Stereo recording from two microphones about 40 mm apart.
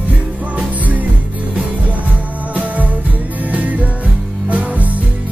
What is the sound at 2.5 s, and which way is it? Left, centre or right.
Music, right.